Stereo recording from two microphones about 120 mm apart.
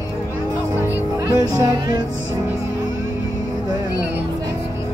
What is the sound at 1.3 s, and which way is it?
Speech, 30° right (ahead or behind).